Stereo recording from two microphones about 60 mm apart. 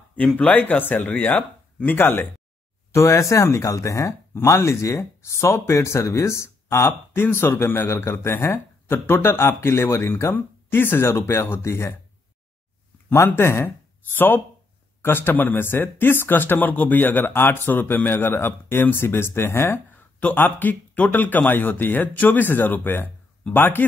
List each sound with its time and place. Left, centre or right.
0.4 s speech: left
2.9 s speech: left
4.5 s speech: left
7.2 s speech: left
7.8 s speech: left
10.3 s speech: left
13.1 s speech: left
20.2 s speech: left